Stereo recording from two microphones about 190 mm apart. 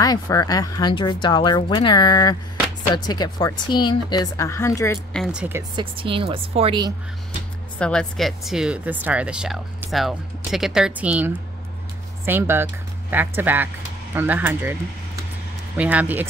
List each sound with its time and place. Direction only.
0.0 s speech: 20° left (ahead or behind)
5.1 s speech: centre (ahead or behind)
5.8 s a woman's voice: 25° right (ahead or behind)
7.8 s speech: 5° left (ahead or behind)